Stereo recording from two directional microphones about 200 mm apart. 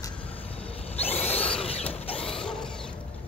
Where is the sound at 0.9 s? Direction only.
30° left (ahead or behind).